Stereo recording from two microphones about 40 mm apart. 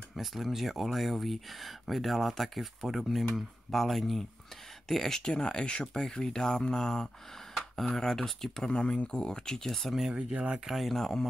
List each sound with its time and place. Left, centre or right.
0.1 s speech: centre
5.2 s speech: left
8.6 s speech: left
10.1 s speech: right
10.7 s speech: centre